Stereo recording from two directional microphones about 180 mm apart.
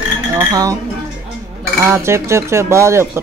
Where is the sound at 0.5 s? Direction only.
20° right (ahead or behind).